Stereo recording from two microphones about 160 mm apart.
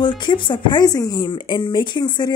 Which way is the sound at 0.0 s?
30° left (ahead or behind).